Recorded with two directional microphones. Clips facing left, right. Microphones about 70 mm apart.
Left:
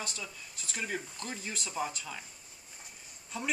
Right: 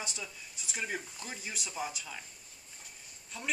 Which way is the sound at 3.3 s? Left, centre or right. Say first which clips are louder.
Left 4 dB; centre.